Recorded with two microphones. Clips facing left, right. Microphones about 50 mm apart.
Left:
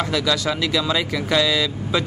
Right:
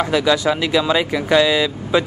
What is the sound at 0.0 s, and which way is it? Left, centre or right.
Speech, right.